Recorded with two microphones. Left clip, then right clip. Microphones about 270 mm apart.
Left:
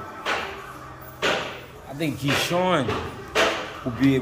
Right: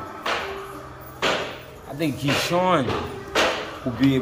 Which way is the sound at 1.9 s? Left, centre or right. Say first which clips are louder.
Right 1 dB; centre.